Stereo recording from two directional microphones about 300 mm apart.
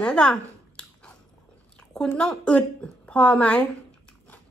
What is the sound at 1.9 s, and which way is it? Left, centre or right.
Speech, centre.